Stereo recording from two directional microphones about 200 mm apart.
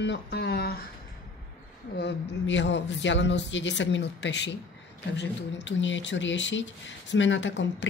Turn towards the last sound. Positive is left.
turn(degrees=60)  # may be behind; listen again after turning